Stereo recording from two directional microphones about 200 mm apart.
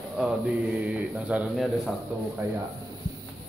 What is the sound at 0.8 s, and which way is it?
Speech, 5° right (ahead or behind).